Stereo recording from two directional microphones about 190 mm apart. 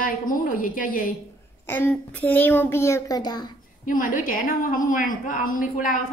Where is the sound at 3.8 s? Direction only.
45° left (ahead or behind).